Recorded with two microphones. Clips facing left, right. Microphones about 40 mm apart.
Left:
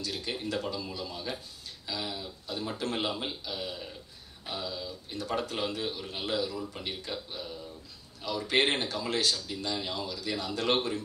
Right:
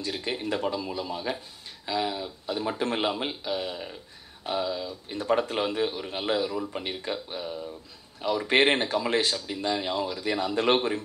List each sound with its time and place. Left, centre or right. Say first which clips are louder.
0.0 s a man's voice: right 4 dB; right